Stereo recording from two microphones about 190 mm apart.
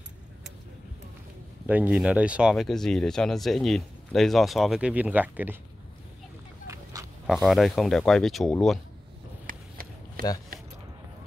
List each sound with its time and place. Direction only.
1.7 s speech: 10° right (ahead or behind)
6.7 s oink: 15° right (ahead or behind)
7.4 s speech: centre (ahead or behind)
9.5 s a sound: 50° right (ahead or behind)